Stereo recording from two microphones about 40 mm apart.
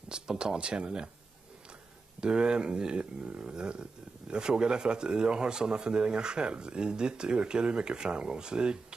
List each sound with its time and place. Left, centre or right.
0.1 s speech: right
2.1 s speech: right